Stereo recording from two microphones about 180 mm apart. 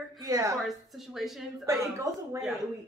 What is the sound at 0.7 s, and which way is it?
Speech, centre (ahead or behind).